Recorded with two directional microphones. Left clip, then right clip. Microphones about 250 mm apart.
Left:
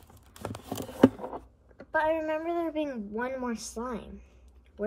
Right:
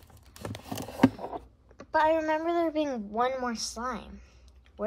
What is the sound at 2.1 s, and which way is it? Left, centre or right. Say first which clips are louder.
Speech: right 3 dB; right.